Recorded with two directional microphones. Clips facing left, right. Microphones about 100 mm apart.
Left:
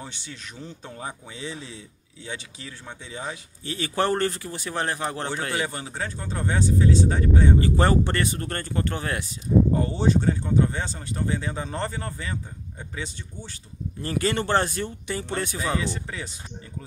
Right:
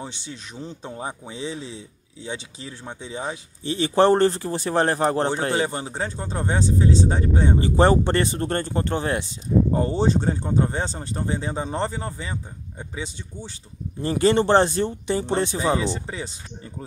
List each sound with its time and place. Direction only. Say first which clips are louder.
0.0 s speech: right 4 dB; 20° right (ahead or behind)